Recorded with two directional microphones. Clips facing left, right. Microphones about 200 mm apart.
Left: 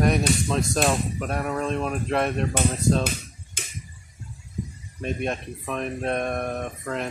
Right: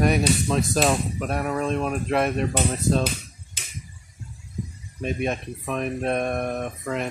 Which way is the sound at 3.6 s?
50° left (ahead or behind).